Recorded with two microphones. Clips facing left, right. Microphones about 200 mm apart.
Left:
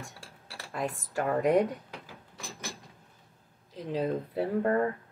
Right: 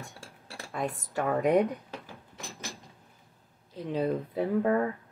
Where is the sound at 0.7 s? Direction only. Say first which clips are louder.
Even; centre (ahead or behind).